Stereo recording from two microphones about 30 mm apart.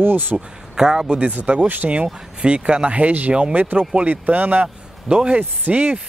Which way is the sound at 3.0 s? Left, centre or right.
Right.